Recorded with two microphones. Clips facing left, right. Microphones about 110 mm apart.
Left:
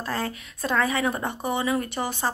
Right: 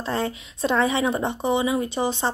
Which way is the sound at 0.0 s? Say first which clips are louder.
Right 3 dB; 25° right (ahead or behind).